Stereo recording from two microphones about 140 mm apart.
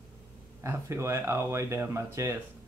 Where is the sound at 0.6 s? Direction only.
20° right (ahead or behind).